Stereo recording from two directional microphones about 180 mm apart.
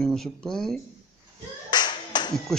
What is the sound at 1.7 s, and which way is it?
Clapping, 25° left (ahead or behind).